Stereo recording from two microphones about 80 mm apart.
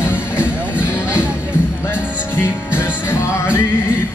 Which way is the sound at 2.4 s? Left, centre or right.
Left.